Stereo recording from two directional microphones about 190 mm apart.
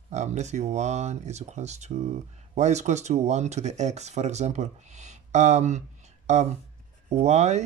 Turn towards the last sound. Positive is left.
turn(degrees=-35)  # may be behind; listen again after turning